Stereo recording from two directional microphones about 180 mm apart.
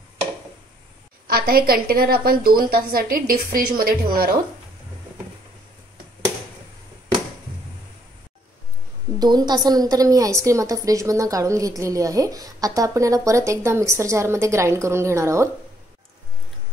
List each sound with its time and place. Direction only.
1.2 s a woman's voice: 55° right (ahead or behind)
9.2 s a woman's voice: 25° right (ahead or behind)